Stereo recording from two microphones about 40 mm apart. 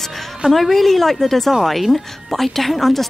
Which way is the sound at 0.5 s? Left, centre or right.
Centre.